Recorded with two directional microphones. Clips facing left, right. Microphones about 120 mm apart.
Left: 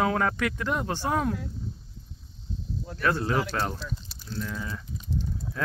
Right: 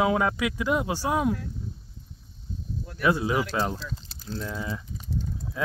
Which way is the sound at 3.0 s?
10° right (ahead or behind).